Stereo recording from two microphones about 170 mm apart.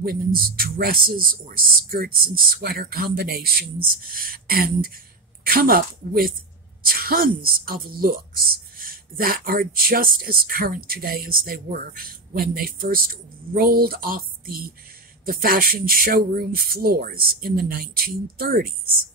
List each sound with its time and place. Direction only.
0.0 s a woman's voice: 60° right (ahead or behind)